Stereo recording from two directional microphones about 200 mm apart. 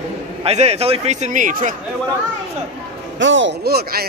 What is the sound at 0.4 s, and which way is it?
A man's voice, 30° right (ahead or behind).